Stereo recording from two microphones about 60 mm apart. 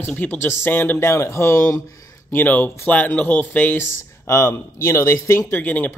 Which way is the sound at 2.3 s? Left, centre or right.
Left.